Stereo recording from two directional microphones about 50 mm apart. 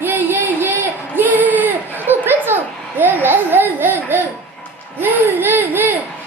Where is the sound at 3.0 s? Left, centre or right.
Right.